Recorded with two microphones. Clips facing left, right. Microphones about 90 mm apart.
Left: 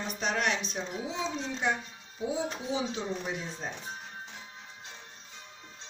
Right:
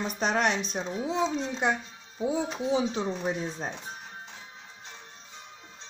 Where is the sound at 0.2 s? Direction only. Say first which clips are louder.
Right 4 dB; 35° right (ahead or behind).